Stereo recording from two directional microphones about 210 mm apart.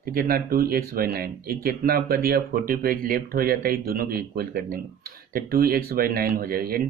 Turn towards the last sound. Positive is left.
turn(degrees=-45)  # may be behind; listen again after turning